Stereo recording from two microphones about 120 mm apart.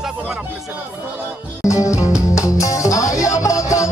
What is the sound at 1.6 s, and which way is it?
Music, 25° left (ahead or behind).